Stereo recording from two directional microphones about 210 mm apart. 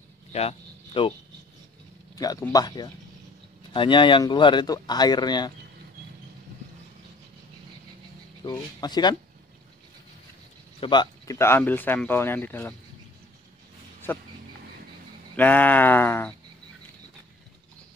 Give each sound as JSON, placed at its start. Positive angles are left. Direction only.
{"t": 0.3, "sound": "a sound", "side_deg": 30}
{"t": 2.1, "sound": "speech", "side_deg": 15}
{"t": 8.5, "sound": "speech", "side_deg": 20}
{"t": 10.8, "sound": "speech", "side_deg": 20}
{"t": 14.1, "sound": "speech", "side_deg": 10}
{"t": 15.3, "sound": "speech", "side_deg": 10}